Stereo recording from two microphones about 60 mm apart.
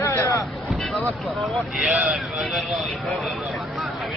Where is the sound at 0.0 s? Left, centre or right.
Left.